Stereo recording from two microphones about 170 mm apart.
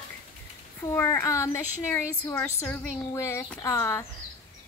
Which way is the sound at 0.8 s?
15° left (ahead or behind).